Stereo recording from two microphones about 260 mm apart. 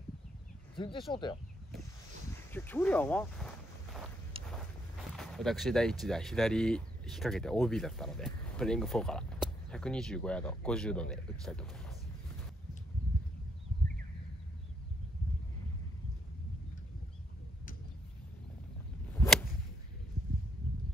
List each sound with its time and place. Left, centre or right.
0.7 s speech: centre
2.5 s a sound: centre
4.5 s speech: centre
19.1 s whip: centre